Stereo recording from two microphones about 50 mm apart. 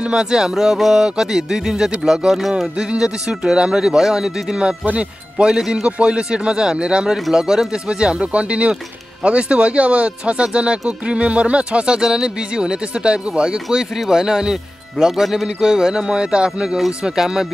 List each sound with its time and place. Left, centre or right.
0.1 s speech: centre